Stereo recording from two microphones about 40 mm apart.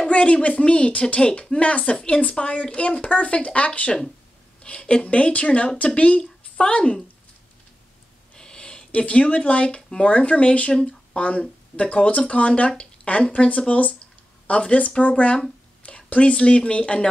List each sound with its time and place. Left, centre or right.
0.1 s speech: left
8.4 s a sound: left
9.0 s speech: left